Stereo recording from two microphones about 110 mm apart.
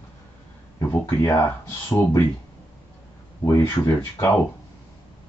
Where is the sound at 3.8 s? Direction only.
25° left (ahead or behind).